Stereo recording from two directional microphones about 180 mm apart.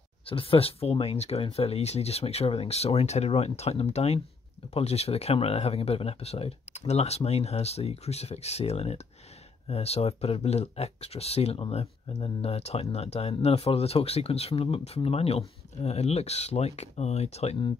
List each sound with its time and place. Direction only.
0.3 s speech: 30° left (ahead or behind)